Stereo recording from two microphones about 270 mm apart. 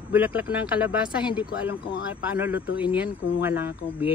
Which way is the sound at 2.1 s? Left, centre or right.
Centre.